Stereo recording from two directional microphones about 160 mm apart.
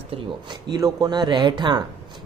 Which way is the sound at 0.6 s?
25° right (ahead or behind).